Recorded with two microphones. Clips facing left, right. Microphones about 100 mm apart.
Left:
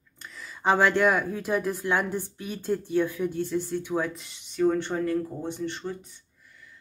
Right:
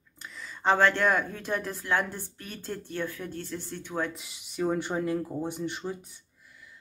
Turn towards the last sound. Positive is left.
turn(degrees=-10)  # may be behind; listen again after turning